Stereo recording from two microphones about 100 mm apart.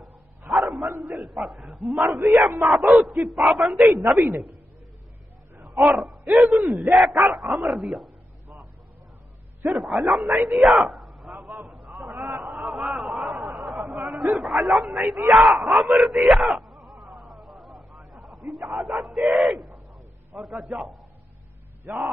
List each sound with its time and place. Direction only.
0.5 s dog: centre (ahead or behind)
1.0 s a man's voice: 5° right (ahead or behind)
5.6 s a man's voice: centre (ahead or behind)
9.7 s a man's voice: centre (ahead or behind)
12.1 s a man's voice: 20° right (ahead or behind)
12.4 s a sound: 5° right (ahead or behind)
20.3 s a man's voice: centre (ahead or behind)